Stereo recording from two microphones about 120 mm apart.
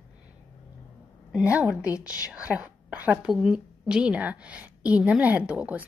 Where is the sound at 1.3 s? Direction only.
10° right (ahead or behind).